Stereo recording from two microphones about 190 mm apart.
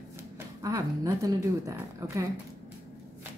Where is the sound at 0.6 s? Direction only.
20° right (ahead or behind).